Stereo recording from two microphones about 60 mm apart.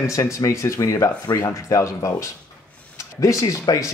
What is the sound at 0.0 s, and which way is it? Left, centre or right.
Speech, left.